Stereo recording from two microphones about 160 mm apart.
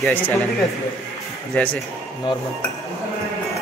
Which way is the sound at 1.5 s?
10° left (ahead or behind).